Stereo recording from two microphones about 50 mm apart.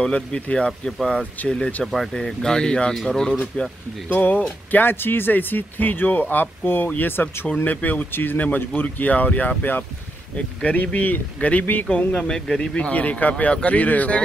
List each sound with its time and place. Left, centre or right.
0.0 s speech: centre
0.7 s speech: centre
1.4 s speech: left
2.1 s speech: centre
4.1 s speech: left
7.5 s speech: left
12.1 s speech: centre
12.7 s speech: left